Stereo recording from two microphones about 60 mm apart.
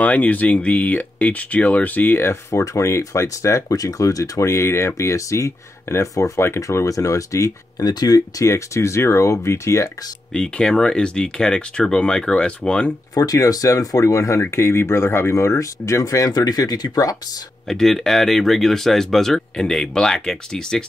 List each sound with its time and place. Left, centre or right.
0.0 s speech: left
2.5 s speech: left
10.3 s speech: centre
13.1 s speech: left
14.5 s speech: left
17.6 s speech: centre